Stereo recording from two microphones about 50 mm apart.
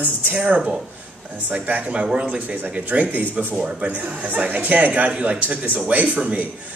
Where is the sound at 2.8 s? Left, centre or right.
Right.